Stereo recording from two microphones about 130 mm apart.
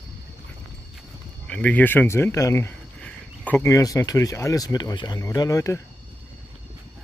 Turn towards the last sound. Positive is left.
turn(degrees=25)  # may be behind; listen again after turning